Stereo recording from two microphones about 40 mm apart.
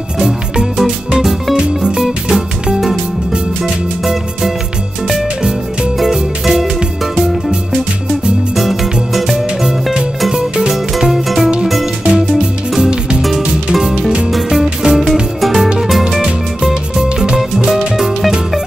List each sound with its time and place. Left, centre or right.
0.2 s music: centre
4.0 s music: centre
6.0 s music: centre
8.5 s music: centre
10.3 s music: right
10.7 s music: centre
12.0 s music: right; by 18.1 s centre